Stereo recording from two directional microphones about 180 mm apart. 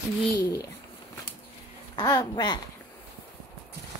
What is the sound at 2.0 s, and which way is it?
Speech, 20° left (ahead or behind).